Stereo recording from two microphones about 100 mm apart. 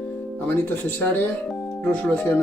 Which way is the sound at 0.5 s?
20° left (ahead or behind).